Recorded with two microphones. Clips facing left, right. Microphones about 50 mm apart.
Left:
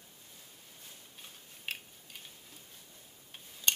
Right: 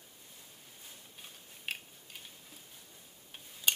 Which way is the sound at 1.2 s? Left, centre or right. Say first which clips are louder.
Even; centre.